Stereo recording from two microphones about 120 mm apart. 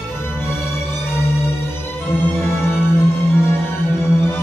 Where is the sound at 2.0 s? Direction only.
20° left (ahead or behind).